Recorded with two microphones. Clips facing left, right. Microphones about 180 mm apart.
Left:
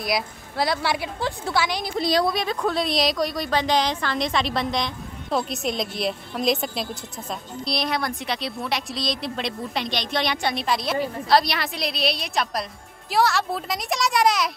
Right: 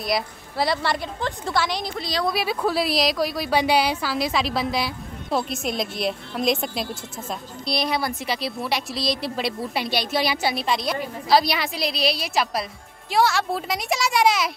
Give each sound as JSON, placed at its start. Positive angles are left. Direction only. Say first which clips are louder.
{"t": 0.0, "sound": "a woman's voice", "louder": "right 1 dB", "side_deg": 0}
{"t": 2.0, "sound": "speech", "louder": "left 9 dB", "side_deg": 50}
{"t": 2.2, "sound": "a woman's voice", "louder": "even", "side_deg": -5}